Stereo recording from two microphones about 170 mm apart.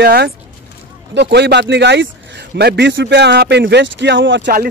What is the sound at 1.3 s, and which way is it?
Speech, 80° right.